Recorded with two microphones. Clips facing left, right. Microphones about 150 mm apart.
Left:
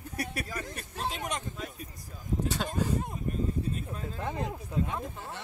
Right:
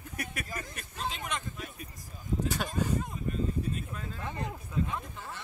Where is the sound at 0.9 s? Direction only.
45° left (ahead or behind).